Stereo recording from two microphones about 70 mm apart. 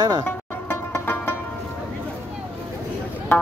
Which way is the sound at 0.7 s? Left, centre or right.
Left.